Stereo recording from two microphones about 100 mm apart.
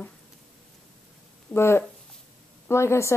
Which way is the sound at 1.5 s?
25° left (ahead or behind).